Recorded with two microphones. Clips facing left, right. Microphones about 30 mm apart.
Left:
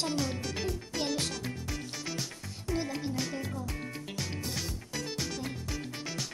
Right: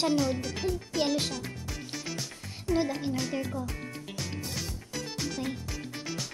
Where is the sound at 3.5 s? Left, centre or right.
Centre.